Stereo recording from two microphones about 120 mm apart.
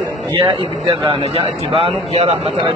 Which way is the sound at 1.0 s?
50° right (ahead or behind).